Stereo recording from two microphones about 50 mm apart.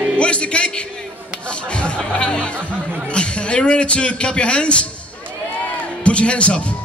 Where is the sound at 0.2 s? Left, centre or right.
Left.